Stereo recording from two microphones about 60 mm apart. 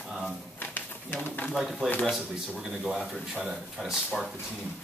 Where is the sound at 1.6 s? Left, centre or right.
Centre.